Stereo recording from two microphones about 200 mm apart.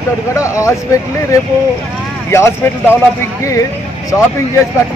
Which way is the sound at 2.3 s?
15° left (ahead or behind).